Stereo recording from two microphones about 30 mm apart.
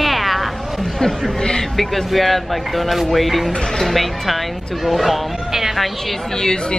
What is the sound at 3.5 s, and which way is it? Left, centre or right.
Speech, left.